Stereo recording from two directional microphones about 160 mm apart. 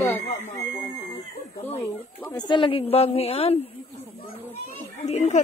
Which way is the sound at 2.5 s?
35° left (ahead or behind).